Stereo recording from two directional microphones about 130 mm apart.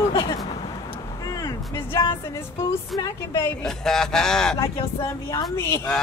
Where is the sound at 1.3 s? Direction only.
25° left (ahead or behind).